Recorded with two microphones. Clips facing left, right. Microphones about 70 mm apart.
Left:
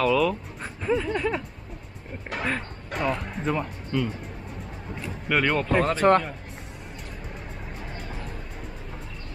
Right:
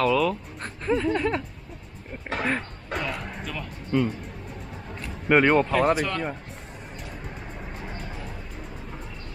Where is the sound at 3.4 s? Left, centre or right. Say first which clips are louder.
Left 8 dB; left.